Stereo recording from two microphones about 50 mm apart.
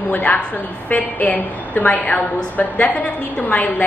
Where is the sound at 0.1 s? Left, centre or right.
Left.